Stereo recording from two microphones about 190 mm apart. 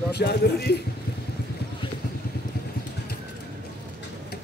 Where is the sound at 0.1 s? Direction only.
60° left (ahead or behind).